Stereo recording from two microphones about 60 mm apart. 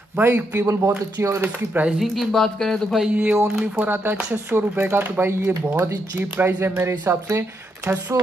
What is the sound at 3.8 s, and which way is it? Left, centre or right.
Speech, right.